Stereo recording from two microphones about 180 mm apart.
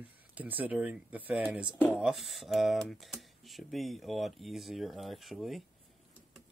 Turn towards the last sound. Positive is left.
turn(degrees=0)  # may be behind; listen again after turning